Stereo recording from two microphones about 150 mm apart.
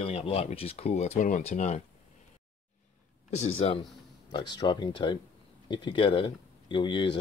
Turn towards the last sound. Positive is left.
turn(degrees=30)  # may be behind; listen again after turning